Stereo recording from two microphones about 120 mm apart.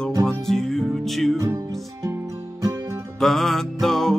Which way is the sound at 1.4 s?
25° right (ahead or behind).